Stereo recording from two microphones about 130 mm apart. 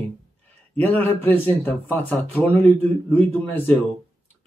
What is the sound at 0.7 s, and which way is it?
Speech, 15° left (ahead or behind).